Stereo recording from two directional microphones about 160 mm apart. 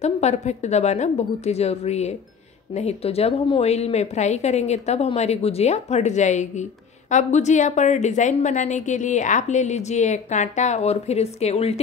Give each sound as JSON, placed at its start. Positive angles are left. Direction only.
{"t": 0.0, "sound": "a woman's voice", "side_deg": 45}